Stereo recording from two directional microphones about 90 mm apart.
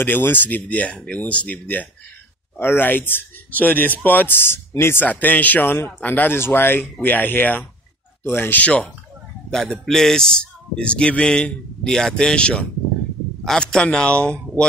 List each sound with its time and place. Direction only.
0.0 s speech: 20° left (ahead or behind)
9.5 s a man's voice: 5° left (ahead or behind)